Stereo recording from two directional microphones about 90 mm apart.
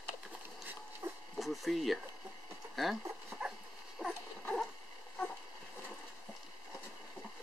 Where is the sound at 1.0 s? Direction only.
30° right (ahead or behind).